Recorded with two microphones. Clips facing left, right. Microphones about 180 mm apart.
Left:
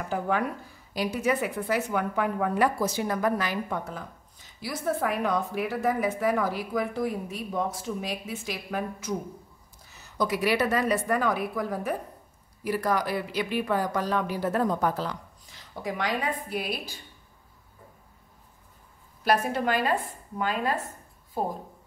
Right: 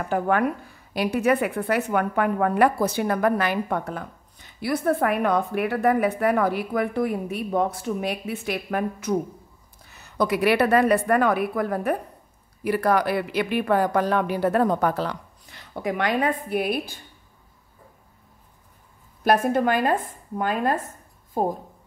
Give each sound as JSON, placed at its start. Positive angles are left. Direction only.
{"t": 0.1, "sound": "a woman's voice", "side_deg": -60}
{"t": 19.2, "sound": "speech", "side_deg": -50}